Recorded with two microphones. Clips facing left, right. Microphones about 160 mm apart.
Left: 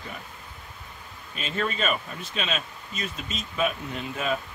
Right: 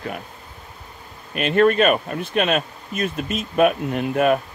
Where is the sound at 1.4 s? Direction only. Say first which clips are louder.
Right 13 dB; 65° right (ahead or behind).